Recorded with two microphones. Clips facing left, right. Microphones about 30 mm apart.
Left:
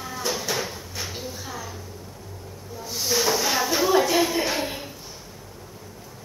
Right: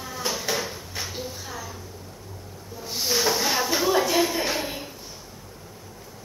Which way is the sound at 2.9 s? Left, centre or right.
Centre.